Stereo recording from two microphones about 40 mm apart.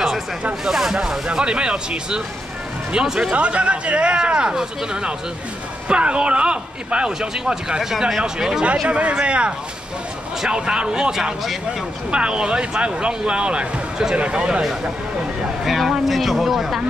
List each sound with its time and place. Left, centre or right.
0.7 s speech: centre
1.2 s speech: right
3.3 s speech: right; by 8.6 s centre
8.8 s speech: right
10.5 s speech: right
12.1 s speech: right
15.6 s speech: centre